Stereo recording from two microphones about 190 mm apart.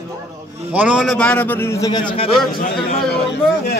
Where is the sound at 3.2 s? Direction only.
60° left (ahead or behind).